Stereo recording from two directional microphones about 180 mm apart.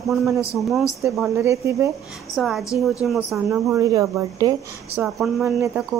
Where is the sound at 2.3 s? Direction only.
Centre (ahead or behind); by 4.5 s 20° right (ahead or behind).